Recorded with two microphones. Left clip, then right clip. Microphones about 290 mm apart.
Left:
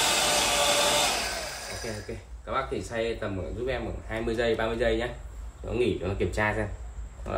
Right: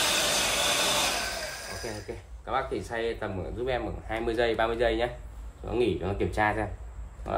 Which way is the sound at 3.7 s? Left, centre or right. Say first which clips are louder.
Right 3 dB; centre.